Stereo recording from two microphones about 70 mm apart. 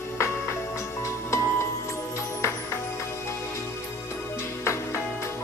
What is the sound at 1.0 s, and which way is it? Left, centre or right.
Music, left.